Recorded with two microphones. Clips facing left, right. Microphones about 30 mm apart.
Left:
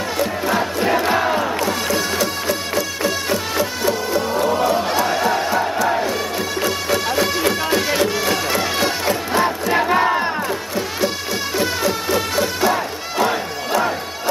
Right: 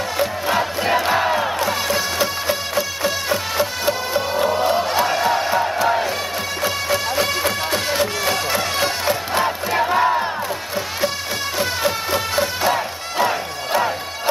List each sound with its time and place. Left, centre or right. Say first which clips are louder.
0.7 s crowd: left 1 dB; centre
2.7 s music: left 1 dB; centre
3.8 s music: left 1 dB; centre
5.0 s crowd: even; centre
6.6 s music: even; centre
9.8 s crowd: even; centre
11.8 s music: left 1 dB; centre